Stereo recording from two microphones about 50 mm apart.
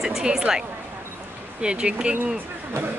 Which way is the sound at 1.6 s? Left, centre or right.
Centre.